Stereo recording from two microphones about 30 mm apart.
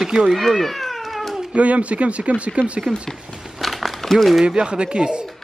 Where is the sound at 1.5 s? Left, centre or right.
Right.